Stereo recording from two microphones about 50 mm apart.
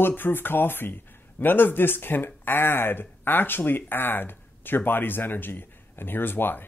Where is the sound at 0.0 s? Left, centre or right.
Left.